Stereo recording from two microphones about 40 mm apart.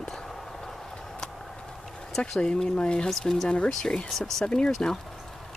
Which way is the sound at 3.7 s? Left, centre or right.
Centre.